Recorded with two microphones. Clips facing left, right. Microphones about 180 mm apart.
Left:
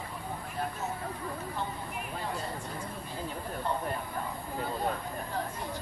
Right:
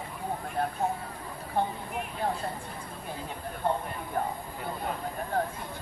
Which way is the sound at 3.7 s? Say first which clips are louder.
Right 5 dB; 55° right (ahead or behind).